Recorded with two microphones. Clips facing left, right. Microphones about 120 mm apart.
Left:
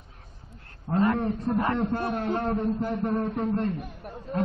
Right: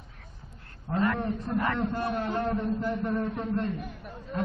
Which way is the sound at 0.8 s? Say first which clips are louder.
Left 3 dB; 35° left (ahead or behind).